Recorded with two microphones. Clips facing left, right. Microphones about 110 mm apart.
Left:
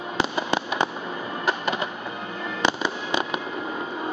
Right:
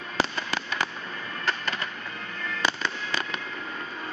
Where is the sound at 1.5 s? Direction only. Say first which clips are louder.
Left 5 dB; 15° left (ahead or behind).